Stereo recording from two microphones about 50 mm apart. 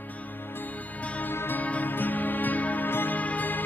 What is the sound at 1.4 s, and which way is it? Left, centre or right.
Music, left.